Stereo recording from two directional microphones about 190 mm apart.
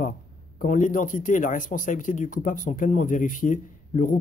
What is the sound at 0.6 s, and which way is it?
A man's voice, 40° left (ahead or behind).